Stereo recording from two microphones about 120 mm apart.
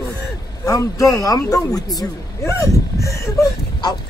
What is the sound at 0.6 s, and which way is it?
A man's voice, 30° left (ahead or behind).